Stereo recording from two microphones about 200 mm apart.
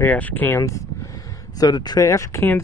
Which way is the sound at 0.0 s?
10° left (ahead or behind).